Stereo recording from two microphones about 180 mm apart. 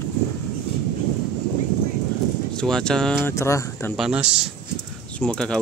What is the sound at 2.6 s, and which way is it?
Speech, 5° left (ahead or behind).